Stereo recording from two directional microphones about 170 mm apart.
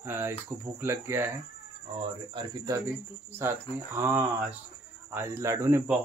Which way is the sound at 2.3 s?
25° right (ahead or behind).